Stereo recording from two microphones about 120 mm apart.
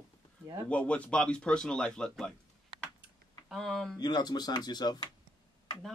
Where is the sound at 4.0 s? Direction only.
35° left (ahead or behind).